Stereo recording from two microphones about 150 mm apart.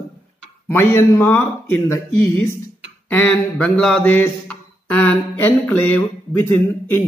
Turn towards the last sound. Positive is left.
turn(degrees=15)  # may be behind; listen again after turning